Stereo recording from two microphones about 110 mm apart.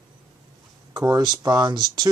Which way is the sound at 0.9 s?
40° right (ahead or behind).